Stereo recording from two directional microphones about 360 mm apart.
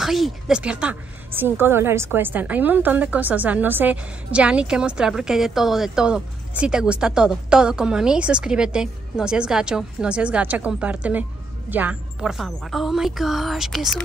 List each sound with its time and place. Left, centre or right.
0.0 s a woman's voice: centre